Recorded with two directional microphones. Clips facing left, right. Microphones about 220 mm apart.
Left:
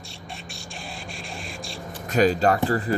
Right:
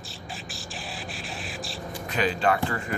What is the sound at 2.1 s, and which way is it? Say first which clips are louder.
Speech: left 5 dB; 40° left (ahead or behind).